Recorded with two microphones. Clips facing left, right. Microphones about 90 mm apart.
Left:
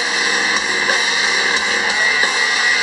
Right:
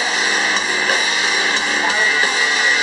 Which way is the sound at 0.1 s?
5° left (ahead or behind).